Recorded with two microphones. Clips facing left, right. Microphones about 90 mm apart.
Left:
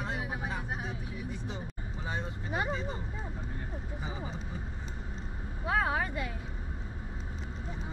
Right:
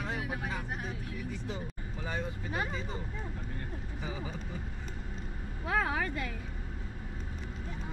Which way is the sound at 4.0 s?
20° left (ahead or behind).